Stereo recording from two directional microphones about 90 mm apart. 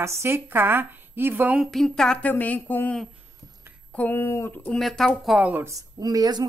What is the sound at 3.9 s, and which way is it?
Speech, 20° left (ahead or behind).